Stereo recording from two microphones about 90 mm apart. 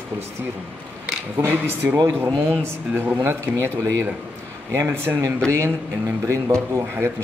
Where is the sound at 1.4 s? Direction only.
25° right (ahead or behind).